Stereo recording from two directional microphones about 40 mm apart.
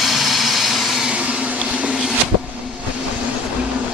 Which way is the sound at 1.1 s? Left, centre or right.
Right.